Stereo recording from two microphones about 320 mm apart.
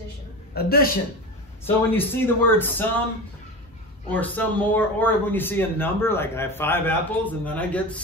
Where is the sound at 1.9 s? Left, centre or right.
Centre.